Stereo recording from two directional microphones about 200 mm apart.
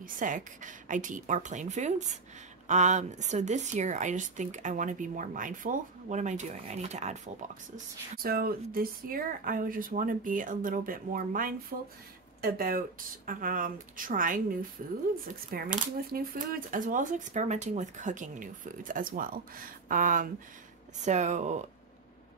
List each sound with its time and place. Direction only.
0.0 s speech: 40° right (ahead or behind)
7.7 s speech: 45° right (ahead or behind)
15.5 s speech: 45° right (ahead or behind)